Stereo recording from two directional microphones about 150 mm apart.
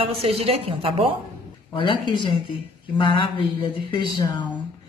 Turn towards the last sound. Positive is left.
turn(degrees=30)  # may be behind; listen again after turning